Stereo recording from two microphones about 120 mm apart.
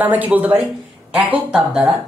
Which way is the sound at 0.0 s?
15° right (ahead or behind).